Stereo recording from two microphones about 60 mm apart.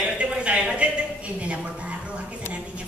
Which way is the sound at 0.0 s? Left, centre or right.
Centre.